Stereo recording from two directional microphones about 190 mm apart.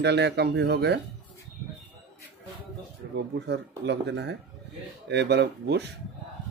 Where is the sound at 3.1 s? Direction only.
65° right (ahead or behind).